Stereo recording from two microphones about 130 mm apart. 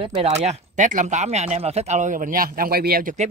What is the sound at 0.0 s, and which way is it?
Speech, 50° right (ahead or behind).